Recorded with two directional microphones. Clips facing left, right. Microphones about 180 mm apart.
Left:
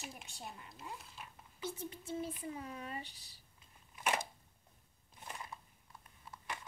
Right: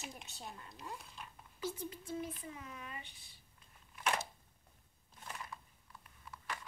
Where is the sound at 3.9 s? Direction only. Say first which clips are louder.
Even; 15° left (ahead or behind).